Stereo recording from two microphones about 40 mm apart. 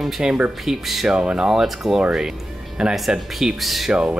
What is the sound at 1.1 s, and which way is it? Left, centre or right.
Speech, right.